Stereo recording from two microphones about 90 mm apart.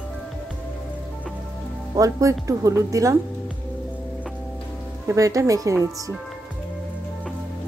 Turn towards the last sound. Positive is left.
turn(degrees=-40)  # may be behind; listen again after turning